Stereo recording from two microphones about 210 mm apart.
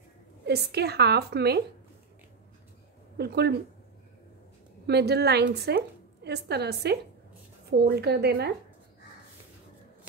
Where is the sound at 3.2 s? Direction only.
50° right (ahead or behind).